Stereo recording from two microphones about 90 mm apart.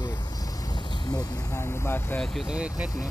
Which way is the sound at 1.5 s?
30° left (ahead or behind).